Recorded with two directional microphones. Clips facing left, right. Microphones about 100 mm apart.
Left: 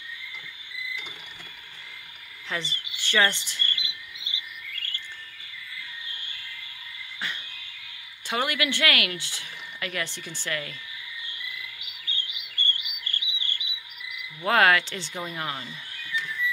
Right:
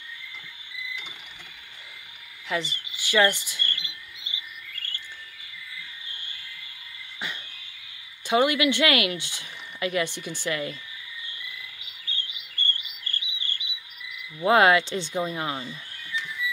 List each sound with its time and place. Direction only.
3.0 s speech: 10° right (ahead or behind)
3.6 s chirp: 40° right (ahead or behind)
8.3 s speech: 20° right (ahead or behind)
11.4 s chirp: 30° right (ahead or behind)
14.4 s speech: 20° right (ahead or behind)
16.3 s printer: 10° right (ahead or behind)